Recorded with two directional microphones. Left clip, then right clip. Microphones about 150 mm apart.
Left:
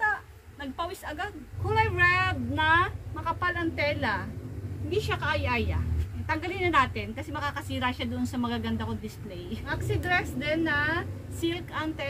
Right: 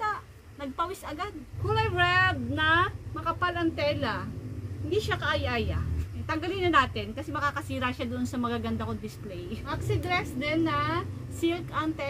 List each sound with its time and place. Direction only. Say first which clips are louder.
0.6 s a woman's voice: right 2 dB; 10° right (ahead or behind)